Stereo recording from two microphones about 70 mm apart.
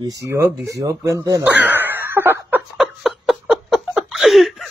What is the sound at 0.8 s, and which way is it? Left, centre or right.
Speech, right.